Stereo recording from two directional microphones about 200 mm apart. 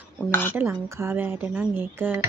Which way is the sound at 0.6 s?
10° right (ahead or behind).